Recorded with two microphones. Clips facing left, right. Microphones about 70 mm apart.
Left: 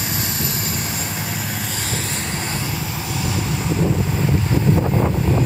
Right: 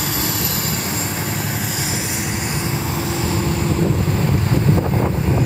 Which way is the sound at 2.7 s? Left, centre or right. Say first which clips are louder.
Right 4 dB; right.